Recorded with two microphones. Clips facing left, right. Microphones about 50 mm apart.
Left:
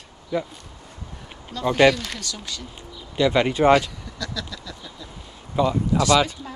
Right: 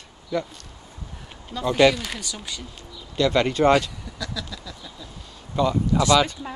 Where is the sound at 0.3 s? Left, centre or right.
Centre.